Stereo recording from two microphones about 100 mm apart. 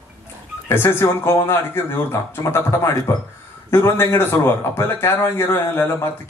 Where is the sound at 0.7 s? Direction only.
25° left (ahead or behind).